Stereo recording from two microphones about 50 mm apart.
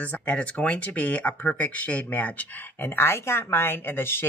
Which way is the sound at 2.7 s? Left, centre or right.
Left.